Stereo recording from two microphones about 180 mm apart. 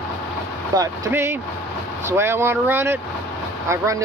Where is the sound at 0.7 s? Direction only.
20° right (ahead or behind).